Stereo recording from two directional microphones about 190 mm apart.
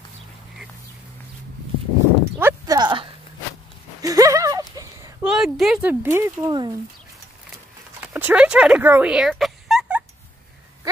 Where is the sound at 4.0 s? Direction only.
20° right (ahead or behind).